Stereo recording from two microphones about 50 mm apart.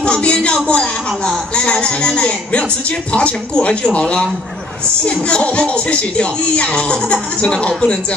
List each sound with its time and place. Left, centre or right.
0.0 s music: left
0.7 s speech: centre